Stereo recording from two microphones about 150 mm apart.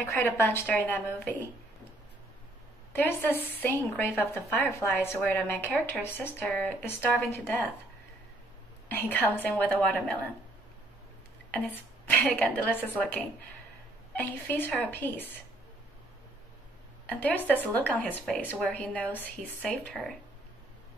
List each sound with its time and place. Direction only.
0.1 s a woman's voice: 15° left (ahead or behind)
2.9 s a woman's voice: 10° left (ahead or behind)
8.8 s a woman's voice: 10° left (ahead or behind)
11.5 s a woman's voice: 10° left (ahead or behind)
14.1 s a woman's voice: 10° left (ahead or behind)
17.0 s a woman's voice: 10° left (ahead or behind)